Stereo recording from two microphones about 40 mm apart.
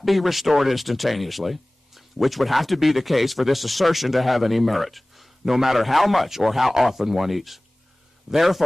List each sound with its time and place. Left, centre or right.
0.0 s speech: centre